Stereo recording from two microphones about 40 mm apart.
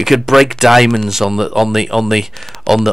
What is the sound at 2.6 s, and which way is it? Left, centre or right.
Speech, centre.